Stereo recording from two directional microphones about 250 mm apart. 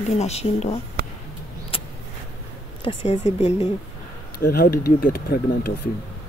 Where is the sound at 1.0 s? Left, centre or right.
Right.